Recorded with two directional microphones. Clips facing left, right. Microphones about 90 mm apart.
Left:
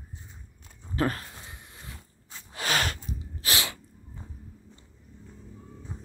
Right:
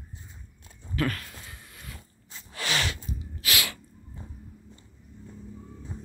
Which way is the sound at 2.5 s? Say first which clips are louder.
Left 2 dB; 45° left (ahead or behind).